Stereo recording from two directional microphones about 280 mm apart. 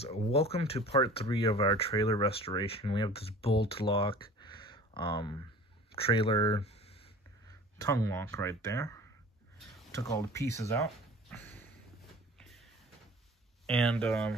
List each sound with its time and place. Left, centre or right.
0.0 s speech: left
12.4 s a sound: centre
13.7 s speech: centre